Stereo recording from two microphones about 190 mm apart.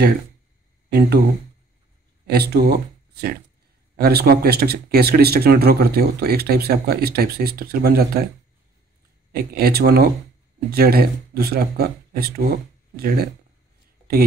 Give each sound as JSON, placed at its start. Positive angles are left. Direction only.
{"t": 0.8, "sound": "speech", "side_deg": -55}
{"t": 2.2, "sound": "speech", "side_deg": -55}
{"t": 9.3, "sound": "speech", "side_deg": -55}